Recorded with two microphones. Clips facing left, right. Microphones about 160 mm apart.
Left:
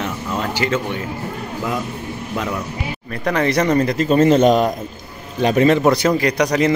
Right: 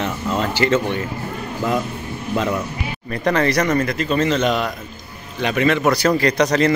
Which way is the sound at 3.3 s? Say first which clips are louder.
Left 2 dB; 15° left (ahead or behind).